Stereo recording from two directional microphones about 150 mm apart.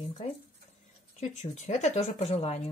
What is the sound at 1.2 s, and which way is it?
A woman's voice, 50° left (ahead or behind).